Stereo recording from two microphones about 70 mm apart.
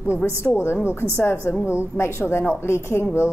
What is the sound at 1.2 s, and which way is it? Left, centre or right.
A woman's voice, left.